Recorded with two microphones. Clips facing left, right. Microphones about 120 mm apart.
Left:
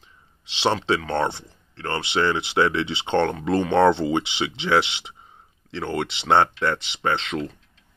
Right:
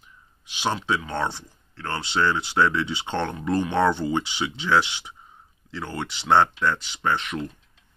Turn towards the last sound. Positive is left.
turn(degrees=25)  # may be behind; listen again after turning